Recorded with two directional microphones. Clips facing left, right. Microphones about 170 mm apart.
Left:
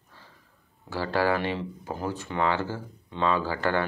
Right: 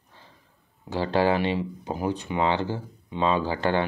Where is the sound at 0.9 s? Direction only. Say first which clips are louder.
Right 3 dB; 20° right (ahead or behind).